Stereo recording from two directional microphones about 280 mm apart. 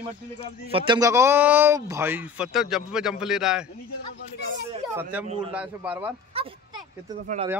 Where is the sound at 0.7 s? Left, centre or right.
Centre.